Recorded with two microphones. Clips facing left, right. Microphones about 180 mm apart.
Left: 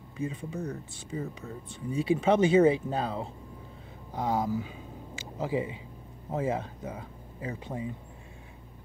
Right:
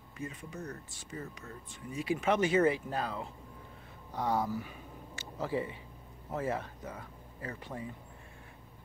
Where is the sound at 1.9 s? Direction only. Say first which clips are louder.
Left 6 dB; 30° left (ahead or behind).